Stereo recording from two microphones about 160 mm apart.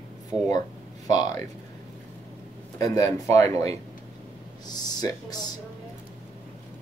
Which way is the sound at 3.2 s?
20° left (ahead or behind).